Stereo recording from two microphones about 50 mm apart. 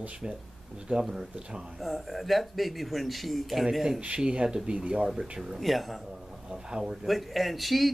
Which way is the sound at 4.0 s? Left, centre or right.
Centre.